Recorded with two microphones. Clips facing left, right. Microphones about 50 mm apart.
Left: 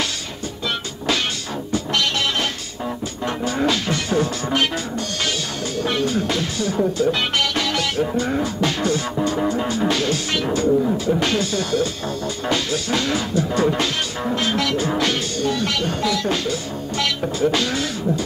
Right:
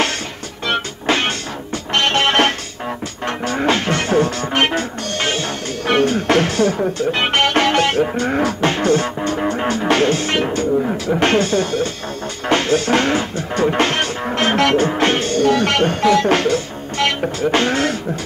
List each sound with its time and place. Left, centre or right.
2.0 s music: right
3.6 s music: right
5.9 s speech: right
7.0 s speech: right
14.9 s music: right
15.4 s speech: right
17.5 s speech: right